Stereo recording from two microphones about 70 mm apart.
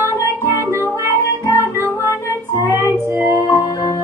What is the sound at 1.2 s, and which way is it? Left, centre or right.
Music, left.